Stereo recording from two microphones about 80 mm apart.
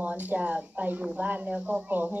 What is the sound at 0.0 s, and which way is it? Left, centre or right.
Speech, centre.